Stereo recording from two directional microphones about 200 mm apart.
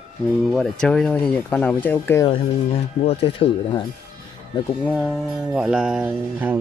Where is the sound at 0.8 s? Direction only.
5° left (ahead or behind).